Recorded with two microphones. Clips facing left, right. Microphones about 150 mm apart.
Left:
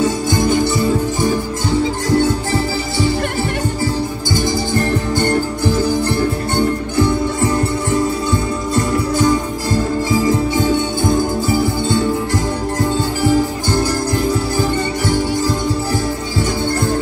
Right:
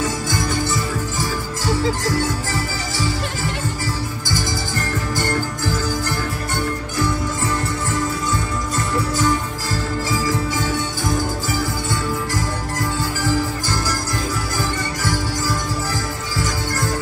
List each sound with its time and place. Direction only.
0.0 s music: 25° left (ahead or behind)
13.2 s music: 25° left (ahead or behind)